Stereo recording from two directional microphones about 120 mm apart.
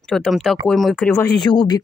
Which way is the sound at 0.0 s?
5° left (ahead or behind).